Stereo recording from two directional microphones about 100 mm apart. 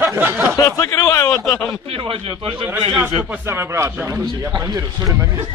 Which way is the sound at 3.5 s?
25° right (ahead or behind).